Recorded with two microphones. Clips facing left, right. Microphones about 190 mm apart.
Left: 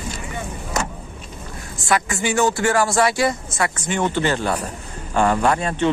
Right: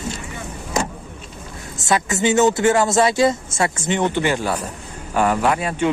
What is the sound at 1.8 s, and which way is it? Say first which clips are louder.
A man's voice: right 3 dB; 20° right (ahead or behind).